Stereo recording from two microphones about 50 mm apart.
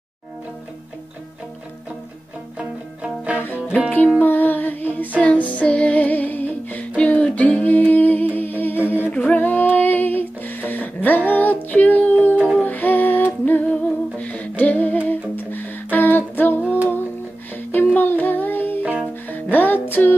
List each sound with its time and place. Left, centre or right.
3.0 s music: right
4.2 s music: left
5.2 s music: left
7.0 s humming: left
9.1 s music: left
16.6 s music: right
17.6 s music: left
18.8 s music: right
19.2 s music: left